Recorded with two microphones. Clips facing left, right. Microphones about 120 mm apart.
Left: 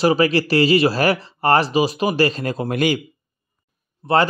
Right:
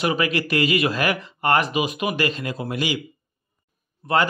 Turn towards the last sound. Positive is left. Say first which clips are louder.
# left 4 dB
turn(degrees=30)  # may be behind; listen again after turning